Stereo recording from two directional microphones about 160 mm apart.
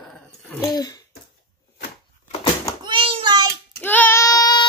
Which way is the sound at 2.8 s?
30° right (ahead or behind).